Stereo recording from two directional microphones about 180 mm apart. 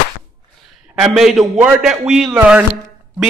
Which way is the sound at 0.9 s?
Centre (ahead or behind).